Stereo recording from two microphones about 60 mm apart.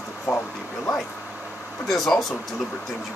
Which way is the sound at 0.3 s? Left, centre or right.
Left.